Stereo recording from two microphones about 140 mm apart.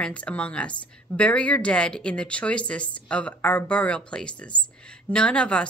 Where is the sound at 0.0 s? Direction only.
10° left (ahead or behind).